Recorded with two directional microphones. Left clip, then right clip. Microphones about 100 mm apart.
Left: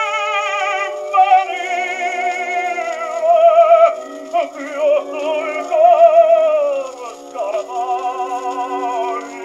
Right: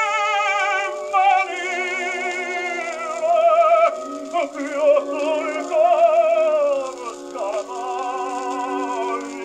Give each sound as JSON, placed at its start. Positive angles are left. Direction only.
{"t": 0.0, "sound": "music", "side_deg": -30}